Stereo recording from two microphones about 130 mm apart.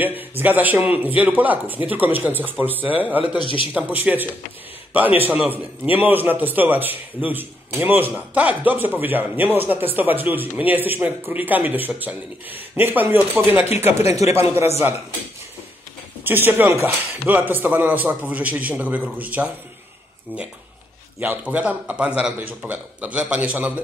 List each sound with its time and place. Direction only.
0.4 s a man's voice: 15° right (ahead or behind)
3.3 s a man's voice: 40° left (ahead or behind)
3.7 s a man's voice: 15° right (ahead or behind)
16.3 s a man's voice: 15° right (ahead or behind)
21.2 s a man's voice: 15° right (ahead or behind)